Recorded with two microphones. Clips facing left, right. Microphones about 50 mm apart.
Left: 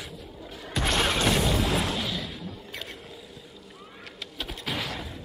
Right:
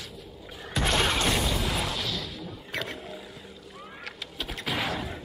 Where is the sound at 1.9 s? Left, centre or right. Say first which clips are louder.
Left 2 dB; centre.